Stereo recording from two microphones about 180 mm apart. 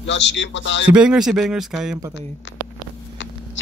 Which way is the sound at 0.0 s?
75° left (ahead or behind).